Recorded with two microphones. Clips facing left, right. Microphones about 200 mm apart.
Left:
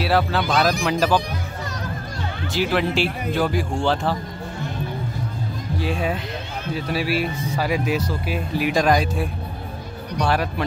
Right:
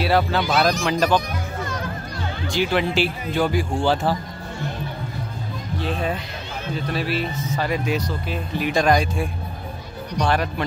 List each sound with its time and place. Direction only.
0.0 s speech: centre (ahead or behind)
2.4 s speech: centre (ahead or behind)
5.8 s speech: 10° left (ahead or behind)